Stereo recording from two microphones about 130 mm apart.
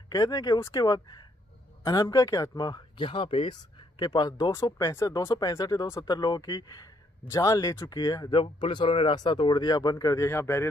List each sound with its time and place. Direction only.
0.1 s speech: 30° left (ahead or behind)